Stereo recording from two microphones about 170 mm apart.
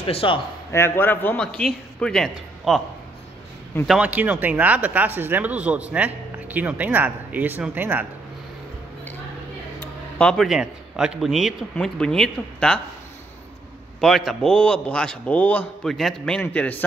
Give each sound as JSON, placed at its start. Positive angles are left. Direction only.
{"t": 0.0, "sound": "a man's voice", "side_deg": 30}
{"t": 0.7, "sound": "a man's voice", "side_deg": 15}
{"t": 3.8, "sound": "speech", "side_deg": -5}
{"t": 10.1, "sound": "a man's voice", "side_deg": 0}
{"t": 14.0, "sound": "a man's voice", "side_deg": 0}